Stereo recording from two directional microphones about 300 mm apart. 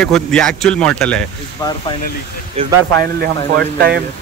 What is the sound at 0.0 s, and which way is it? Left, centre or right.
Speech, centre.